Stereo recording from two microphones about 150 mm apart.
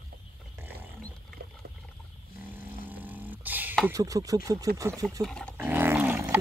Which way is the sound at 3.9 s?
25° right (ahead or behind).